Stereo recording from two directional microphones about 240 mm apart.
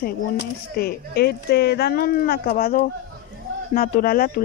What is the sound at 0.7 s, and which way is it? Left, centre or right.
Speech, left.